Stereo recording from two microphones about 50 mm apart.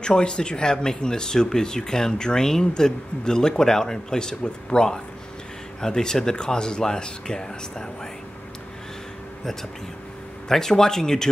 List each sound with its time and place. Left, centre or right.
0.0 s speech: centre
9.4 s speech: centre